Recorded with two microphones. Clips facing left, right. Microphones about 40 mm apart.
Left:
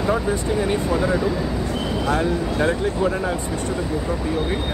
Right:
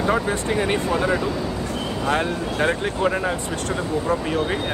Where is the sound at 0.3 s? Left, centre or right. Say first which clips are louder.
Even; right.